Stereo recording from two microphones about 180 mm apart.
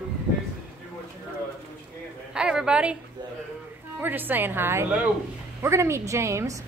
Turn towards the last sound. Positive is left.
turn(degrees=-15)  # may be behind; listen again after turning